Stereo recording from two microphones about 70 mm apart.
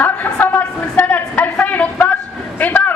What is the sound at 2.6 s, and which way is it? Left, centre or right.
Vehicle, left.